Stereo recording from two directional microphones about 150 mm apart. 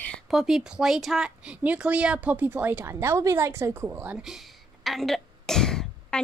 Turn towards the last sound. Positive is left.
turn(degrees=5)  # may be behind; listen again after turning